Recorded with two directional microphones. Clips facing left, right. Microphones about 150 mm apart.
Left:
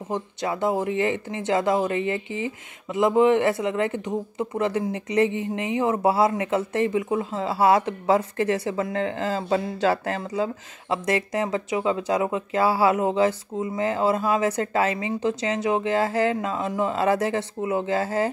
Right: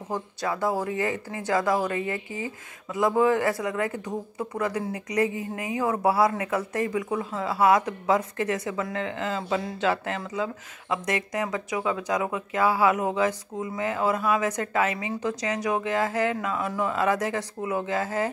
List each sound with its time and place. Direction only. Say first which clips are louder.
0.1 s speech: left 2 dB; 20° left (ahead or behind)